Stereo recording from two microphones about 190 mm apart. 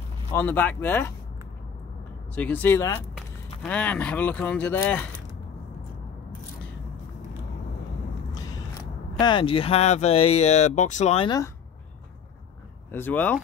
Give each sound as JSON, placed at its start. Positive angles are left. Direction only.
{"t": 0.3, "sound": "speech", "side_deg": 10}
{"t": 2.3, "sound": "speech", "side_deg": 10}
{"t": 9.2, "sound": "speech", "side_deg": 25}
{"t": 11.2, "sound": "speech", "side_deg": 20}
{"t": 12.9, "sound": "speech", "side_deg": 10}